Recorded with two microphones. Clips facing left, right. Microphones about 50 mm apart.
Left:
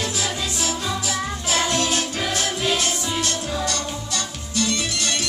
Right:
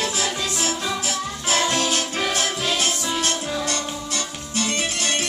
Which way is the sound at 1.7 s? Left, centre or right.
Right.